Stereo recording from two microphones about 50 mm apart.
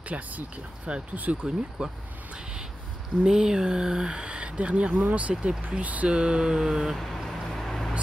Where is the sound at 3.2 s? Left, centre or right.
Centre.